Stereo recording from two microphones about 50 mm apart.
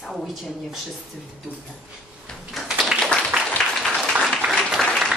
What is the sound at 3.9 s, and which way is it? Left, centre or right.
Applause, centre.